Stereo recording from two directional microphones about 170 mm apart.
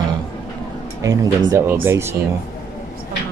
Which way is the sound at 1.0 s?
20° right (ahead or behind).